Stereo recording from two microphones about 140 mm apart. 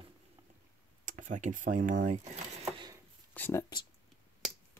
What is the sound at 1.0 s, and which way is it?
Speech, 60° right (ahead or behind).